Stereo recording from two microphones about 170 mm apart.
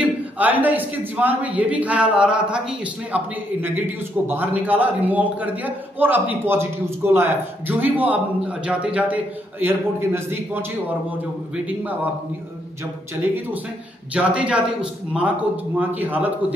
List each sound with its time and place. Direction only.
0.0 s a man's voice: 10° right (ahead or behind)
4.3 s a man's voice: 10° right (ahead or behind)
14.1 s a man's voice: 5° right (ahead or behind)